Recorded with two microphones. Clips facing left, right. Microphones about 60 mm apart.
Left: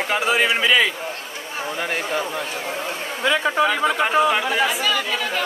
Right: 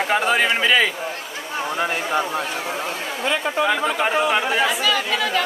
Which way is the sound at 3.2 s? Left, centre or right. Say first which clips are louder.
Left 3 dB; left.